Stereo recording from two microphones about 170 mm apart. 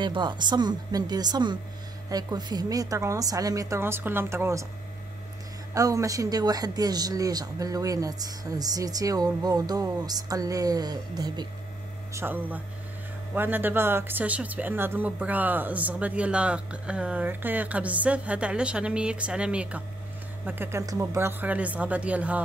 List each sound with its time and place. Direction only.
0.0 s speech: 25° right (ahead or behind)
5.8 s a woman's voice: 20° right (ahead or behind)